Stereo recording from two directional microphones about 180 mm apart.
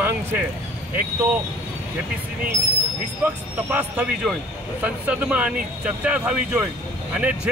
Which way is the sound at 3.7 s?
5° right (ahead or behind).